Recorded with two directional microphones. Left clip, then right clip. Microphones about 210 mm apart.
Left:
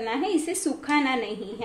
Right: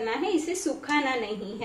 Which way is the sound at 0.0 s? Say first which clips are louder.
Left 1 dB; 40° left (ahead or behind).